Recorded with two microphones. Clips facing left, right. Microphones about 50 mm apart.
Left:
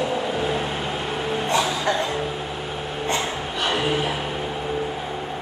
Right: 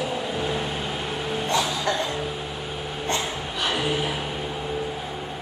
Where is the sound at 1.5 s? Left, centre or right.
Left.